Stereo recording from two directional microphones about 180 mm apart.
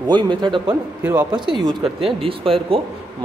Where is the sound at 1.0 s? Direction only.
10° right (ahead or behind).